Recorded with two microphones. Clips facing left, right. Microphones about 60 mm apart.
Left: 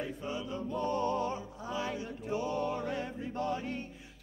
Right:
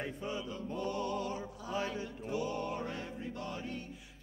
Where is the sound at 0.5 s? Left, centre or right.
Left.